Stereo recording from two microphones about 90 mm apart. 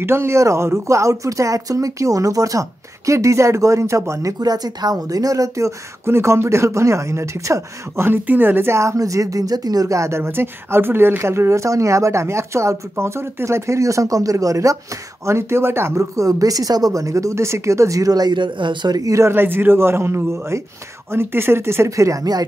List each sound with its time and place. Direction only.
0.0 s speech: 30° right (ahead or behind); by 18.9 s 60° right (ahead or behind)
18.9 s a man's voice: 35° right (ahead or behind)